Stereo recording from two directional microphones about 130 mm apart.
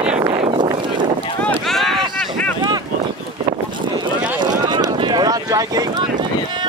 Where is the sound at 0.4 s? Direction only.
35° right (ahead or behind).